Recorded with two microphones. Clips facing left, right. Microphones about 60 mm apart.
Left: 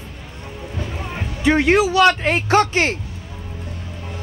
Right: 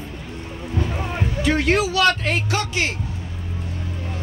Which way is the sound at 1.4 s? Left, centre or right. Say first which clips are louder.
Left 5 dB; centre.